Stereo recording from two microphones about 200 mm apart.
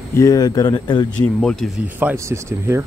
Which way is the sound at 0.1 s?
15° left (ahead or behind).